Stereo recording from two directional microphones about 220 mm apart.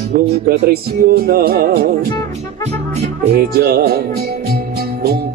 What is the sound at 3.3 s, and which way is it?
Music, 45° right (ahead or behind).